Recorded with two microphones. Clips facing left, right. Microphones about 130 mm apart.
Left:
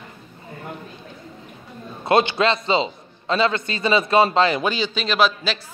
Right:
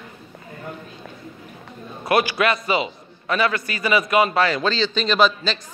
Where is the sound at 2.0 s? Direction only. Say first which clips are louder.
Left 2 dB; 25° left (ahead or behind); by 5.6 s 5° left (ahead or behind).